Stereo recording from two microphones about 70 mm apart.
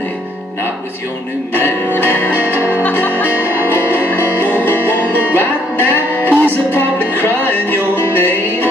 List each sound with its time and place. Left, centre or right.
1.5 s music: left
2.4 s music: right
2.7 s music: left